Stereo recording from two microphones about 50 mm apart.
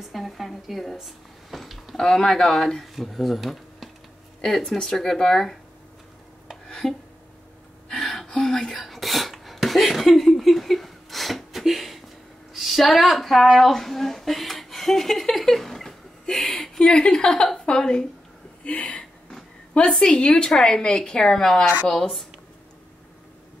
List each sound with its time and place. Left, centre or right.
0.1 s speech: centre
1.0 s a sound: centre
2.0 s speech: centre
4.6 s speech: centre
6.7 s music: centre
7.9 s a sound: centre
16.8 s speech: centre
18.6 s a sound: left
20.0 s speech: centre